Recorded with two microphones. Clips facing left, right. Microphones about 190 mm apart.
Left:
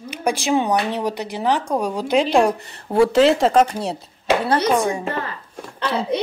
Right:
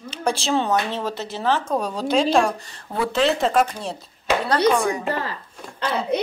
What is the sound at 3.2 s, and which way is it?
Speech, 80° left.